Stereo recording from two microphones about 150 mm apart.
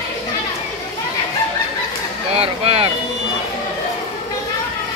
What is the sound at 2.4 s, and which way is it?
Vehicle, 40° right (ahead or behind).